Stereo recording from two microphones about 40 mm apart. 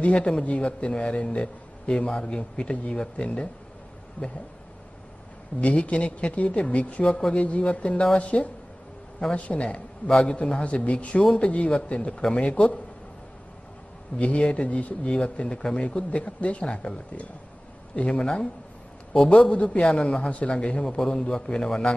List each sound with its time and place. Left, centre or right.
0.0 s a man's voice: left
4.2 s speech: left
5.6 s a man's voice: left
10.6 s a man's voice: left
14.1 s a man's voice: left
19.5 s a man's voice: left
20.8 s a man's voice: centre
21.2 s a man's voice: left